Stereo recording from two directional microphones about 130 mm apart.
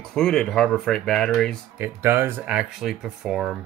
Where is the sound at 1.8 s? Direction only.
20° right (ahead or behind).